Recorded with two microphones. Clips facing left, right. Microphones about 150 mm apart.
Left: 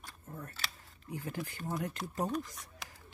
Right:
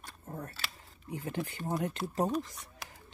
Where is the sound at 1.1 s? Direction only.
20° right (ahead or behind).